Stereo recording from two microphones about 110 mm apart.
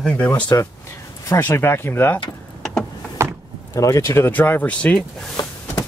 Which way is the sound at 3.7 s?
30° left (ahead or behind).